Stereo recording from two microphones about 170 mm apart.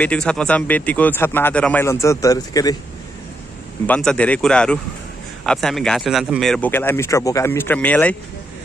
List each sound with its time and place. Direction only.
0.0 s speech: 5° left (ahead or behind); by 2.7 s 20° left (ahead or behind)
3.8 s speech: 5° left (ahead or behind)